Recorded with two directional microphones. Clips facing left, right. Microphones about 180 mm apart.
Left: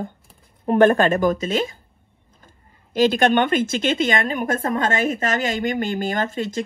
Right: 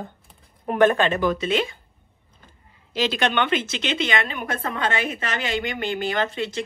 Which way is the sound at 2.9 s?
50° left (ahead or behind).